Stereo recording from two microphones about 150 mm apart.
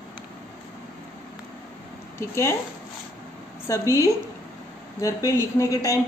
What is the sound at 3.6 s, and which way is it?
A woman's voice, 20° left (ahead or behind).